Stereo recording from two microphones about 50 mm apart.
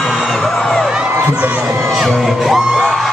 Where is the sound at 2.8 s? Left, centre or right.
Centre.